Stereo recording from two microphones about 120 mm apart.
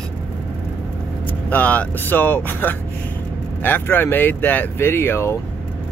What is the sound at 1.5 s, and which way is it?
Speech, 15° left (ahead or behind).